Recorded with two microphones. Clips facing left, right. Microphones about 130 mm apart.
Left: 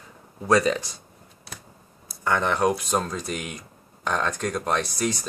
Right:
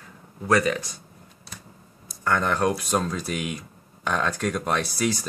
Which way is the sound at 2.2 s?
5° left (ahead or behind).